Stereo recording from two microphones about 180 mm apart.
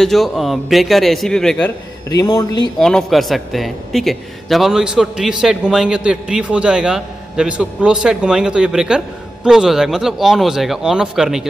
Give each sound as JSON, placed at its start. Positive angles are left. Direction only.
{"t": 0.0, "sound": "a man's voice", "side_deg": 0}
{"t": 2.0, "sound": "speech", "side_deg": 20}
{"t": 2.8, "sound": "a man's voice", "side_deg": 0}